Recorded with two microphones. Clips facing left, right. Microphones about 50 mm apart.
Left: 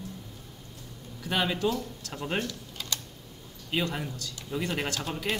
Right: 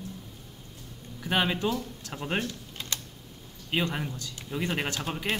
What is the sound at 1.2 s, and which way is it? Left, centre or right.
Speech, centre.